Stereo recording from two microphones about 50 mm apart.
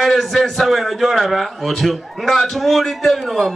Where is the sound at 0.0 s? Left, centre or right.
Centre.